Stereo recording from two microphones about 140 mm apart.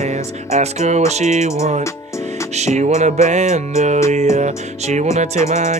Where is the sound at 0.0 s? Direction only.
55° right (ahead or behind).